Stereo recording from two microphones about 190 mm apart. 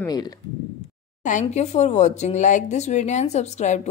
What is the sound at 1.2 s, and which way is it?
Speech, 40° left (ahead or behind).